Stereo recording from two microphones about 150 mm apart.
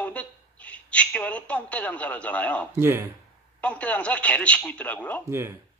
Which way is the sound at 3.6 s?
10° left (ahead or behind).